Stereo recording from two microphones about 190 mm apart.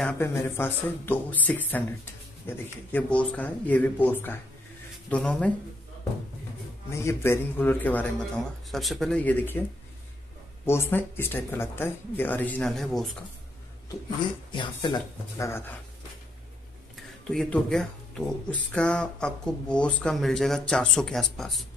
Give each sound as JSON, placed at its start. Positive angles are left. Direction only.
{"t": 0.0, "sound": "speech", "side_deg": 15}
{"t": 6.9, "sound": "speech", "side_deg": 15}
{"t": 10.6, "sound": "speech", "side_deg": 15}
{"t": 14.5, "sound": "speech", "side_deg": 25}
{"t": 16.9, "sound": "speech", "side_deg": 0}